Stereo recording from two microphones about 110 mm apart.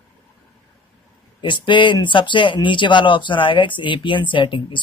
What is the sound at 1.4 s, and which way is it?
Speech, 50° left (ahead or behind).